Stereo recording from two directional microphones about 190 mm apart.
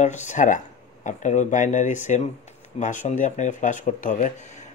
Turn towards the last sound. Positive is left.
turn(degrees=40)  # may be behind; listen again after turning